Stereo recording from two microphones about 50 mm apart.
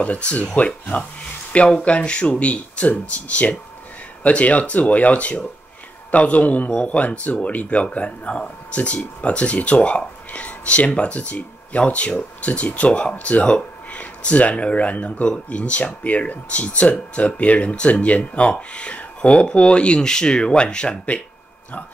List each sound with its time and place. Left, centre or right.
0.0 s a man's voice: left